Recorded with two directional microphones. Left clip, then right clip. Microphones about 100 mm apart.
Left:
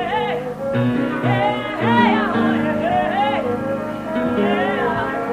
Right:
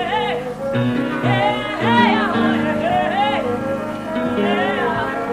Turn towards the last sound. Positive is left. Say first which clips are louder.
# even
turn(degrees=35)  # may be behind; listen again after turning